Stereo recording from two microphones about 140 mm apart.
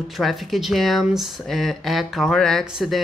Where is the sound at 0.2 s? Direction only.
Centre (ahead or behind).